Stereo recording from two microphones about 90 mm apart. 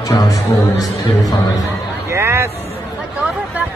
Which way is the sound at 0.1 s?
40° left (ahead or behind).